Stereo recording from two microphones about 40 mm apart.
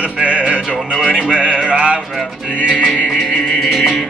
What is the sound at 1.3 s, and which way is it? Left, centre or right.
Music, left.